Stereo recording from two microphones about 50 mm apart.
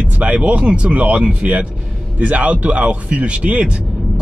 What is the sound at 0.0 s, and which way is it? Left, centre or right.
Speech, right.